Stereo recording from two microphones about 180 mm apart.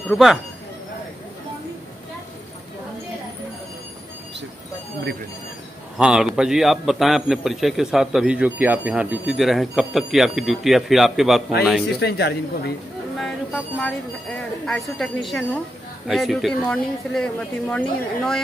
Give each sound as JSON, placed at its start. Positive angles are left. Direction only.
{"t": 0.1, "sound": "a man's voice", "side_deg": 0}
{"t": 5.9, "sound": "a man's voice", "side_deg": -5}
{"t": 12.0, "sound": "speech", "side_deg": 65}
{"t": 13.2, "sound": "a man's voice", "side_deg": 10}